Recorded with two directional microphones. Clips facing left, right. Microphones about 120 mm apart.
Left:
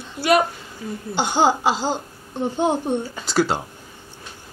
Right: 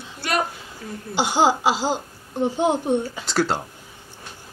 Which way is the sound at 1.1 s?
5° right (ahead or behind).